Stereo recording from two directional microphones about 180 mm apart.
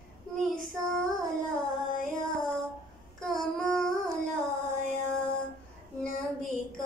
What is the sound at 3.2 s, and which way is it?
Child singing, centre (ahead or behind).